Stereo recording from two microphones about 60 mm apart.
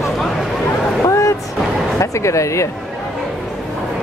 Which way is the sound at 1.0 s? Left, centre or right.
Left.